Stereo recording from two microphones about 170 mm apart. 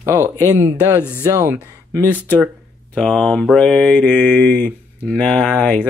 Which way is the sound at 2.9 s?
5° left (ahead or behind).